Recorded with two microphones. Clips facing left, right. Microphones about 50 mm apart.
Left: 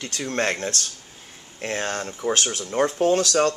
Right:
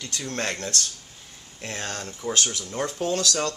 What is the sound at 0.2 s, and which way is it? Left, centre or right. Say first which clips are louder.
Speech: left 6 dB; left.